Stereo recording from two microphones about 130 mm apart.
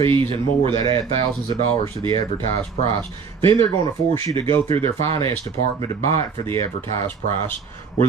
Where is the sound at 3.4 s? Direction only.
45° right (ahead or behind).